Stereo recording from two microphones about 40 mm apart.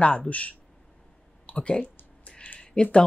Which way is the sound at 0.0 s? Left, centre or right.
Left.